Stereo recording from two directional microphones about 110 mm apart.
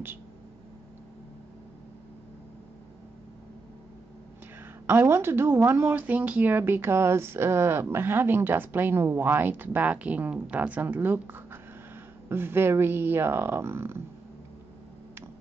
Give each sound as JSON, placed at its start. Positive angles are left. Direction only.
{"t": 4.8, "sound": "speech", "side_deg": -25}